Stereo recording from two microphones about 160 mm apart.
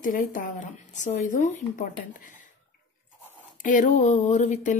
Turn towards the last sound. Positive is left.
turn(degrees=50)  # may be behind; listen again after turning